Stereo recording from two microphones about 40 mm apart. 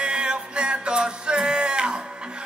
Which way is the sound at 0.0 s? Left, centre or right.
Right.